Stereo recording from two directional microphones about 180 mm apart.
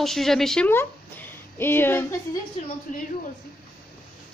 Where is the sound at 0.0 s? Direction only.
Centre (ahead or behind).